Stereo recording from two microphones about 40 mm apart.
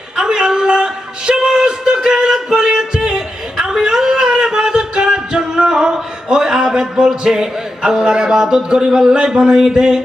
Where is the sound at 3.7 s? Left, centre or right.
Centre.